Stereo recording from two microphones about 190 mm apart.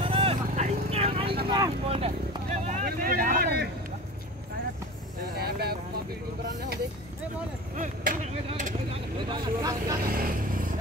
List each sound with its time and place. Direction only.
0.0 s vehicle: 30° right (ahead or behind)
2.6 s vehicle: 45° right (ahead or behind)
5.4 s vehicle: 55° right (ahead or behind)
7.7 s a sound: 45° right (ahead or behind)
8.5 s vehicle: 40° right (ahead or behind)
9.3 s vehicle: 20° right (ahead or behind)
10.0 s vehicle: 50° right (ahead or behind)